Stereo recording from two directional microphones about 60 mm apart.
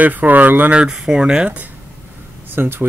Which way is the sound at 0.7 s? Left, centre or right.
Centre.